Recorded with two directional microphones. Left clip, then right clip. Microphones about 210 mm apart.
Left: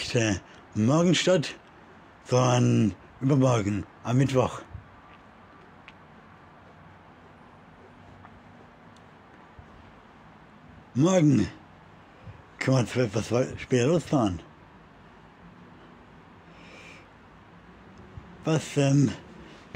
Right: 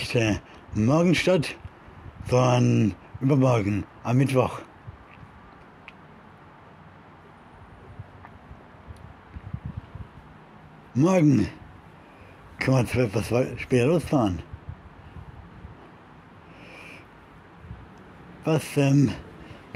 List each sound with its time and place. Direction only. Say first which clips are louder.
0.0 s speech: right 2 dB; centre (ahead or behind)
10.9 s speech: right 2 dB; 5° right (ahead or behind)
12.5 s speech: right 2 dB; 5° right (ahead or behind)
16.7 s a sound: right 4 dB; 5° right (ahead or behind)
18.4 s speech: right 2 dB; 5° right (ahead or behind)